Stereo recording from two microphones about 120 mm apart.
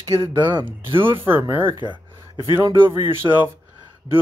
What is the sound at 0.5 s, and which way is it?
Speech, 40° right (ahead or behind).